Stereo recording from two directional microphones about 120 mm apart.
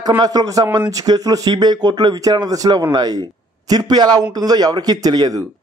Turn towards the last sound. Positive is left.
turn(degrees=-35)  # may be behind; listen again after turning